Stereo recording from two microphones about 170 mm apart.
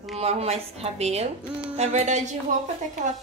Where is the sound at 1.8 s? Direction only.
45° right (ahead or behind).